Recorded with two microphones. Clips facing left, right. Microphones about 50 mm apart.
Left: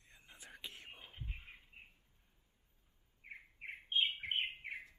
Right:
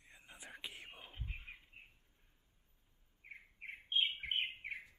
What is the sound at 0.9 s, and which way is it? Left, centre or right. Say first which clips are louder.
Whispering: right 1 dB; centre.